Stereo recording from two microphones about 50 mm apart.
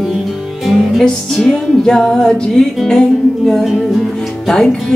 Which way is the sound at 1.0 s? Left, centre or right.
Centre.